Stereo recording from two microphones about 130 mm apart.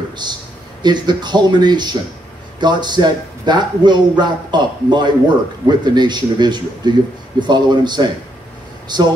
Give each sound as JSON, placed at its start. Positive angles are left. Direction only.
{"t": 0.2, "sound": "a man's voice", "side_deg": -35}